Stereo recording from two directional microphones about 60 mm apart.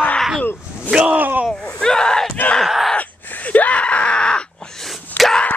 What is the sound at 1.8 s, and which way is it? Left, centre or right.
Speech, centre.